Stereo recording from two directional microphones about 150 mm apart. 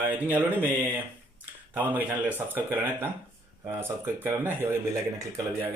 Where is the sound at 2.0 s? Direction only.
10° right (ahead or behind).